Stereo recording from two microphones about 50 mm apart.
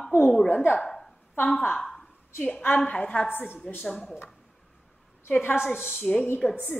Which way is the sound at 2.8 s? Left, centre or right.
Centre.